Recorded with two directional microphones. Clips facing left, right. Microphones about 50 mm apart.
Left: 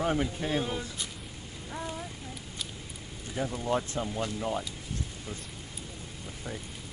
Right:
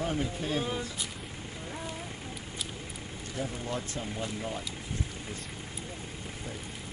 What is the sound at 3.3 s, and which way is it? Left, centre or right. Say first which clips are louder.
Speech: left 5 dB; left.